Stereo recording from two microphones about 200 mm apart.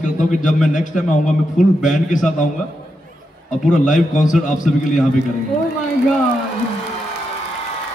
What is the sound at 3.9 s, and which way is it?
Speech, 40° left (ahead or behind).